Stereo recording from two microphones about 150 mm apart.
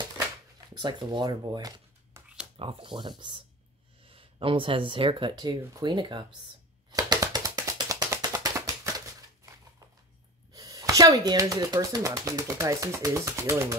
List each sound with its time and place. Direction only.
0.7 s speech: 30° right (ahead or behind)
2.1 s a sound: 20° right (ahead or behind)
2.5 s speech: 35° right (ahead or behind)
6.9 s music: 25° right (ahead or behind)
10.5 s speech: 25° right (ahead or behind)